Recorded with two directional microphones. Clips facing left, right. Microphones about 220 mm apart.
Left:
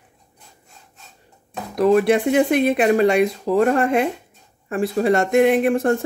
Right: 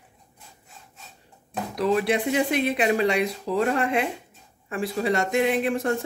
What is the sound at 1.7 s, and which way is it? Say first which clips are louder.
Speech: left 7 dB; 50° left (ahead or behind).